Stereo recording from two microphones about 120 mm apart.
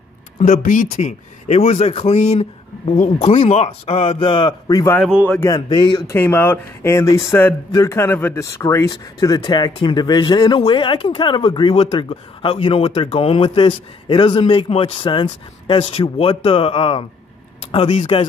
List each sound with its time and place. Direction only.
0.4 s speech: 90° left; by 6.1 s 35° left (ahead or behind)
6.1 s speech: 20° left (ahead or behind); by 18.2 s 50° left (ahead or behind)